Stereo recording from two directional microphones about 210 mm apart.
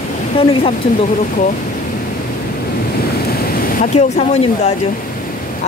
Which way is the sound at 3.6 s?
30° left (ahead or behind).